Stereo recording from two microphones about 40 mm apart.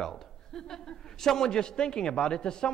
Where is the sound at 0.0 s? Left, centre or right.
Centre.